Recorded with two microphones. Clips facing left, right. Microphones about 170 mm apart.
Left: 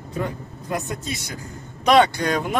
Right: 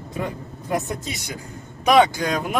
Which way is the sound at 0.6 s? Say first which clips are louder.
Right 2 dB; 15° right (ahead or behind).